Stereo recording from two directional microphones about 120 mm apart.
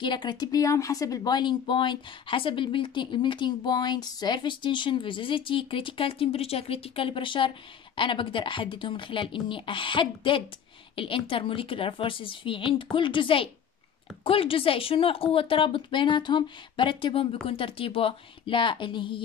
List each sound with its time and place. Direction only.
0.0 s speech: 40° left (ahead or behind)